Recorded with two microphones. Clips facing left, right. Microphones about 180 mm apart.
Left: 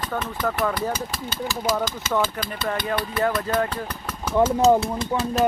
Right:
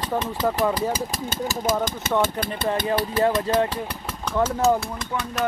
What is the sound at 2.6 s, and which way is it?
Speech, 25° right (ahead or behind).